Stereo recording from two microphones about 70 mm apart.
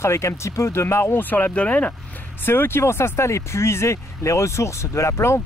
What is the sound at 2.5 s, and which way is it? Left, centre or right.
Speech, left.